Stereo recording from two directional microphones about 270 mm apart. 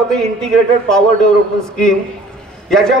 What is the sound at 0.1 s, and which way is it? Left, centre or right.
A man's voice, centre.